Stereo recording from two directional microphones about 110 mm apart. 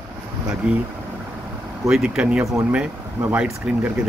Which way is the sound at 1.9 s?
5° right (ahead or behind).